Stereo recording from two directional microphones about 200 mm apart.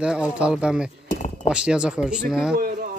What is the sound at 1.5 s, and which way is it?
Speech, 5° right (ahead or behind).